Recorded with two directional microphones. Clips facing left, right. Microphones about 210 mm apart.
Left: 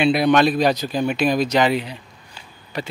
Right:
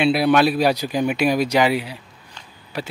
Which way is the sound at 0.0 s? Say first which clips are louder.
Even; 5° right (ahead or behind).